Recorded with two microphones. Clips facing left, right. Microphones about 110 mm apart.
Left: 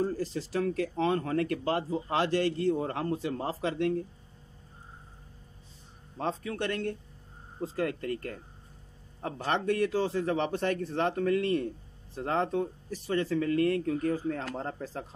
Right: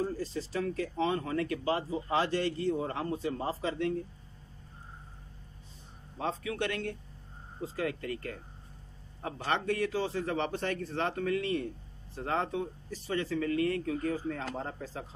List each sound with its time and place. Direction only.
0.2 s speech: 75° left (ahead or behind)
6.1 s a man's voice: 40° left (ahead or behind)